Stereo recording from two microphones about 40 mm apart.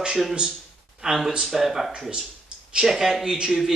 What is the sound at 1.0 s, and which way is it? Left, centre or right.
Speech, centre.